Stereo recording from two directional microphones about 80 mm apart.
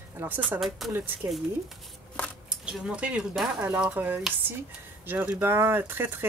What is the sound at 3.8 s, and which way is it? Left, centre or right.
Speech, right.